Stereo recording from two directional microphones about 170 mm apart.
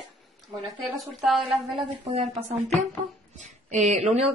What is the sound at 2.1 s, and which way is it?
Speech, 40° right (ahead or behind).